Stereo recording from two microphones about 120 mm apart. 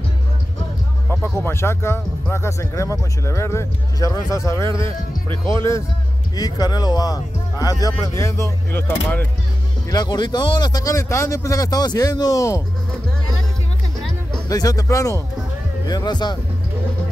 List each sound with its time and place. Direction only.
1.0 s speech: 20° left (ahead or behind)
9.8 s speech: 35° left (ahead or behind)
13.9 s music: 5° left (ahead or behind)
14.5 s speech: 30° left (ahead or behind)